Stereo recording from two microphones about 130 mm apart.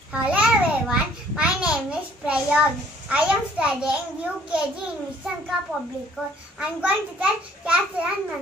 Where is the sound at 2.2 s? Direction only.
10° right (ahead or behind).